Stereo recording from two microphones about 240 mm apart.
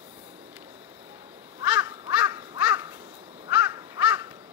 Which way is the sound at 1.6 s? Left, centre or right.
Centre.